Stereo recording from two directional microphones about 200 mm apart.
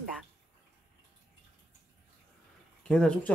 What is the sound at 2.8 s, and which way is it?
Speech, 5° left (ahead or behind).